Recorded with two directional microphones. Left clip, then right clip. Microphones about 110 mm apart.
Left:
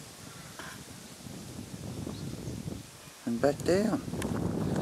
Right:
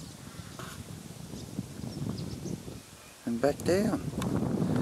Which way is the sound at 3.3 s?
Centre (ahead or behind).